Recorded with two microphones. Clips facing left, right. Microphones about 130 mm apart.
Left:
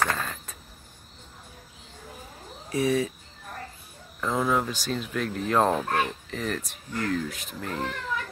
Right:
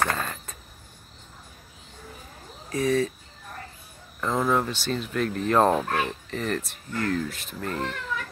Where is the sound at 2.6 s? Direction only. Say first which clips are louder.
Right 1 dB; 15° left (ahead or behind).